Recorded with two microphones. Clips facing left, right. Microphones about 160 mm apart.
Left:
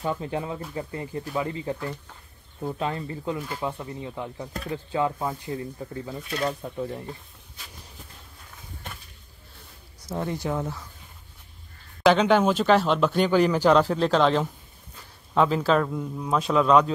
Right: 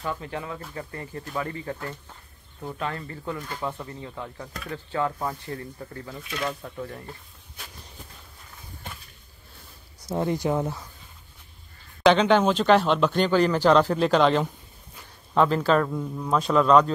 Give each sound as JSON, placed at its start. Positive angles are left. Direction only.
{"t": 0.0, "sound": "speech", "side_deg": 25}
{"t": 6.6, "sound": "speech", "side_deg": 15}
{"t": 10.0, "sound": "speech", "side_deg": -15}
{"t": 12.0, "sound": "a man's voice", "side_deg": 5}